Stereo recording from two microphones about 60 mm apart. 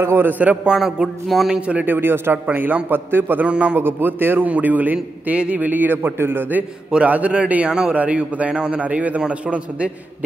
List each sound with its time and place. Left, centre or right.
0.0 s a man's voice: right
0.3 s a man's voice: right
0.7 s a sound: centre
1.9 s a man's voice: right
3.4 s a man's voice: centre
3.7 s a man's voice: right
6.9 s a man's voice: right